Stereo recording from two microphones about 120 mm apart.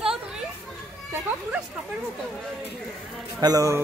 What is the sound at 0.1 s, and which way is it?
Children playing, 5° right (ahead or behind).